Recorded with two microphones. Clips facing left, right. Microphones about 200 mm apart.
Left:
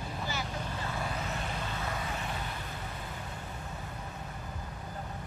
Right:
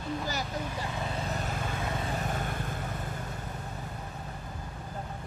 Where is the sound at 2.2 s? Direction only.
45° right (ahead or behind).